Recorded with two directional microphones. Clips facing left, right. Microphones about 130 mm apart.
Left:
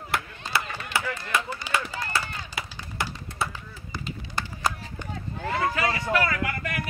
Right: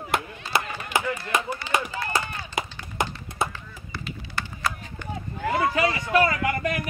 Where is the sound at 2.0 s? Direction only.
20° right (ahead or behind).